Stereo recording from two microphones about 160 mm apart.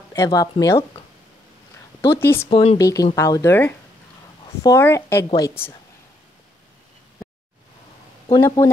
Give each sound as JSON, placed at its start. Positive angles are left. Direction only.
{"t": 0.1, "sound": "speech", "side_deg": 20}
{"t": 2.0, "sound": "a sound", "side_deg": 15}
{"t": 2.5, "sound": "speech", "side_deg": 35}
{"t": 2.8, "sound": "a woman's voice", "side_deg": 20}
{"t": 8.3, "sound": "speech", "side_deg": 20}